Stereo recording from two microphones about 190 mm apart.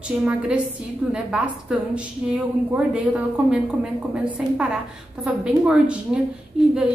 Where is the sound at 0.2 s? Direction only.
5° right (ahead or behind).